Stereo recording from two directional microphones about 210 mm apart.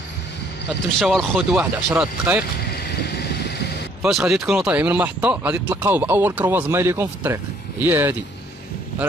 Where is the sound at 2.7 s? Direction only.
50° left (ahead or behind).